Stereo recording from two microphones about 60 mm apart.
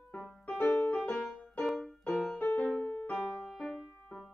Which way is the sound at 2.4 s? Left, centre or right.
Left.